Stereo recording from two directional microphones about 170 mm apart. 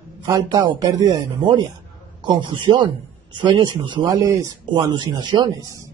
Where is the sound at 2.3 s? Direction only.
25° right (ahead or behind).